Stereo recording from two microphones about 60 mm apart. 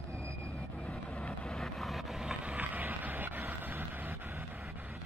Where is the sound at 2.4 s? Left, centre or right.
Right.